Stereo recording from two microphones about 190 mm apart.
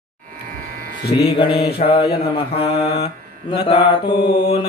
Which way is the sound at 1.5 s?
55° left (ahead or behind).